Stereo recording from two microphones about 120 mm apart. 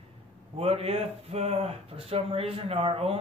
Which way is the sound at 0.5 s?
55° right (ahead or behind).